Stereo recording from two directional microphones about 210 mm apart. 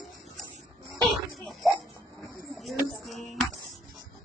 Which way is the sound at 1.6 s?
Centre (ahead or behind).